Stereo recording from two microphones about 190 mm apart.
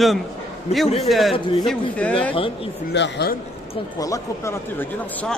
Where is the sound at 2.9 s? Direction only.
65° left (ahead or behind).